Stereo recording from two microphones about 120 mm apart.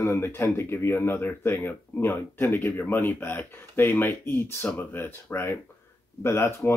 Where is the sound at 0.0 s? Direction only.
20° left (ahead or behind).